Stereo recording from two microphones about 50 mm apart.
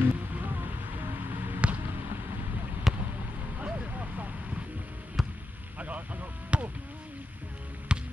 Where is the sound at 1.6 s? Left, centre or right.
Right.